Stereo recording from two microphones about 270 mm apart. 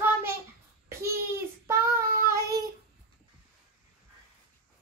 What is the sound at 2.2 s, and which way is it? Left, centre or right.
Speech, centre.